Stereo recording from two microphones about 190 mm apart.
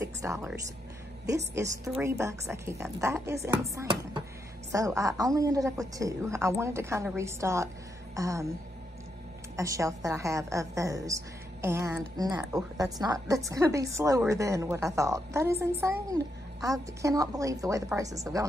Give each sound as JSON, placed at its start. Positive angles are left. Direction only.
{"t": 0.0, "sound": "music", "side_deg": -15}
{"t": 1.2, "sound": "speech", "side_deg": -15}
{"t": 9.6, "sound": "speech", "side_deg": -15}